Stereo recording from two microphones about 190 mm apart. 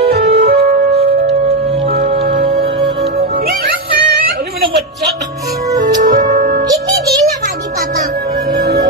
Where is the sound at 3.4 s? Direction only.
55° right (ahead or behind).